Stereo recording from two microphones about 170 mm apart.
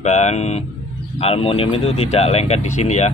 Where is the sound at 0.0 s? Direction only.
40° left (ahead or behind).